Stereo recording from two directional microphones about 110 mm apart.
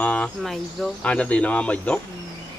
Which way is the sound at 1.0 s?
10° left (ahead or behind).